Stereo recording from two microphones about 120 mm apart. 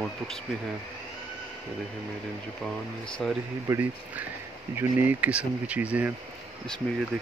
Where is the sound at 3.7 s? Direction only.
15° right (ahead or behind).